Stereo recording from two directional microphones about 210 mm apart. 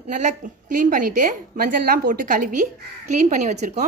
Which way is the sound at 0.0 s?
35° right (ahead or behind).